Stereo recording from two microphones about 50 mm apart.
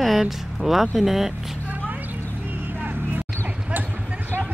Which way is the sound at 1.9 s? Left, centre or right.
Right.